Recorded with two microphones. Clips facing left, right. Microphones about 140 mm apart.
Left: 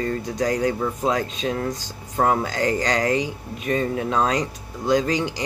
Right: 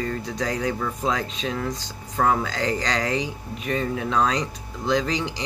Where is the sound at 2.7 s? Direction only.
45° left (ahead or behind).